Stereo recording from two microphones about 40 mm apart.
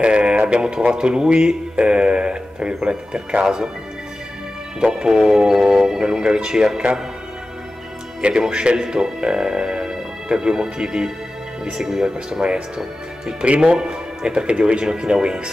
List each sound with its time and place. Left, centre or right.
0.0 s a sound: right
0.5 s speech: right
4.7 s speech: centre
8.2 s speech: right